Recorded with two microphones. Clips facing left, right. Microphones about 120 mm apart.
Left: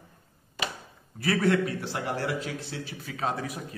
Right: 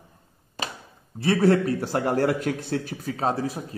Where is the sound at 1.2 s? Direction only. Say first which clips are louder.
Right 5 dB; 30° right (ahead or behind).